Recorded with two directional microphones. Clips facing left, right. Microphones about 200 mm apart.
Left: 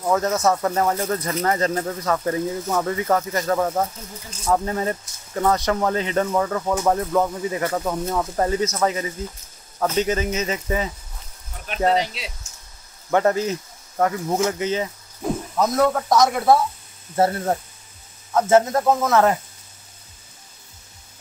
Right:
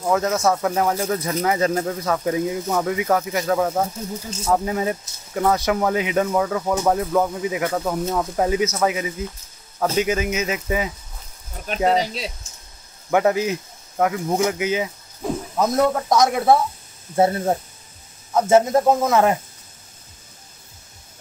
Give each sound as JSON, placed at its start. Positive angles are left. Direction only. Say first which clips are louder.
{"t": 0.0, "sound": "speech", "louder": "even", "side_deg": 0}
{"t": 13.1, "sound": "speech", "louder": "right 1 dB", "side_deg": -5}
{"t": 14.3, "sound": "speech", "louder": "right 1 dB", "side_deg": -15}
{"t": 14.6, "sound": "cricket", "louder": "right 1 dB", "side_deg": -5}
{"t": 15.9, "sound": "speech", "louder": "even", "side_deg": 0}
{"t": 17.1, "sound": "speech", "louder": "right 2 dB", "side_deg": -15}